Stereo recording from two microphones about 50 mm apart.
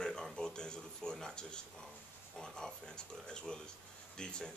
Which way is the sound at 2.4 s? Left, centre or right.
Centre.